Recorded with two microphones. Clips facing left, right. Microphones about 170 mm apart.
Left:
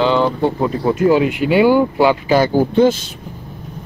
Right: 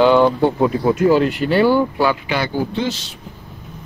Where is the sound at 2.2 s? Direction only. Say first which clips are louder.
Left 7 dB; 40° left (ahead or behind).